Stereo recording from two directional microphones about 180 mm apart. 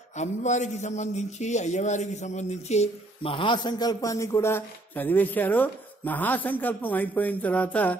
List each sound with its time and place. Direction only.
0.1 s a man's voice: 40° left (ahead or behind); by 8.0 s 10° left (ahead or behind)